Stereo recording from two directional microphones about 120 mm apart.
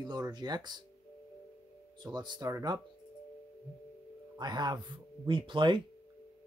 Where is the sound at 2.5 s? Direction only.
25° right (ahead or behind).